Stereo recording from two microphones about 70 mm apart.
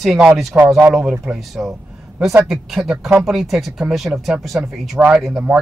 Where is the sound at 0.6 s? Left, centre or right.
Right.